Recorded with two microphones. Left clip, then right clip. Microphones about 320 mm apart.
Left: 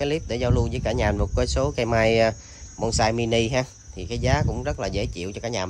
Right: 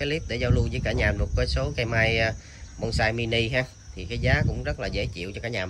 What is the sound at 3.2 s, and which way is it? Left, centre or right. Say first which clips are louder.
Speech: left 3 dB; left.